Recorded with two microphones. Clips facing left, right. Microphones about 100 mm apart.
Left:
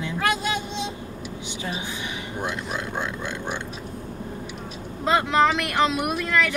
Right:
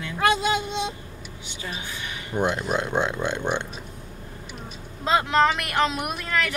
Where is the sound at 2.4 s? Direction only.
20° right (ahead or behind).